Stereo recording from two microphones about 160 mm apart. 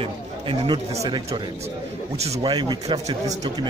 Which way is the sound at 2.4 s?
25° right (ahead or behind).